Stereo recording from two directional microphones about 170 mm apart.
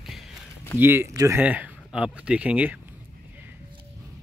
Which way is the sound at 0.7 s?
15° right (ahead or behind).